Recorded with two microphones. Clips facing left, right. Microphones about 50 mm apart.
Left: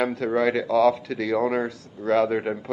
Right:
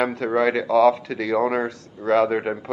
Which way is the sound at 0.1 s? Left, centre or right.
Centre.